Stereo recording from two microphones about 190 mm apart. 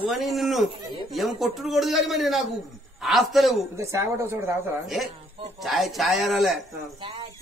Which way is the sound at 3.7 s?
15° right (ahead or behind).